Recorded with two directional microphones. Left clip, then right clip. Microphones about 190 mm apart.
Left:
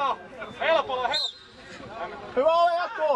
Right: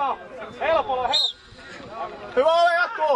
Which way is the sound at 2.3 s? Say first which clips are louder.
Right 3 dB; 10° right (ahead or behind).